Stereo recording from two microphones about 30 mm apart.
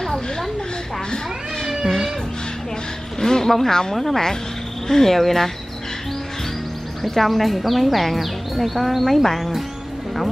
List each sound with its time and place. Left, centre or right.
0.0 s a woman's voice: centre
1.9 s speech: centre
3.2 s speech: centre
7.0 s a woman's voice: centre